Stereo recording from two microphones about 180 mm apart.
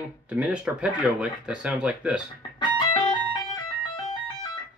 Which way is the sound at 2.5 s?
25° left (ahead or behind).